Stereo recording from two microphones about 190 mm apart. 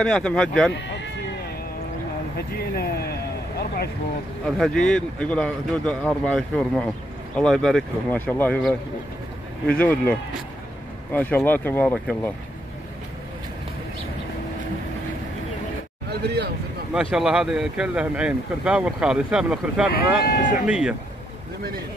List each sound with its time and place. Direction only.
0.0 s speech: 5° left (ahead or behind)
2.5 s speech: 55° left (ahead or behind)
4.6 s speech: 5° left (ahead or behind)
16.1 s speech: 60° right (ahead or behind)
16.9 s speech: 5° right (ahead or behind)
20.2 s speech: 45° left (ahead or behind)
20.6 s speech: 5° right (ahead or behind)